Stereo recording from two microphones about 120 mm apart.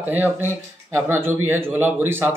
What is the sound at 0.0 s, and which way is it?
Speech, 15° right (ahead or behind).